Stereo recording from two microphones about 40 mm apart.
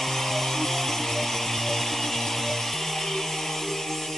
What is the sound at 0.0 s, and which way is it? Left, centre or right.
Chainsaw, centre.